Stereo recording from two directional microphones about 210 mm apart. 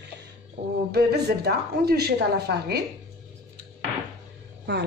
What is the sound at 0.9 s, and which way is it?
Speech, 50° right (ahead or behind).